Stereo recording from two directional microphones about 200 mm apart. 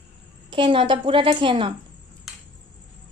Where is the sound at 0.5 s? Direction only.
25° right (ahead or behind).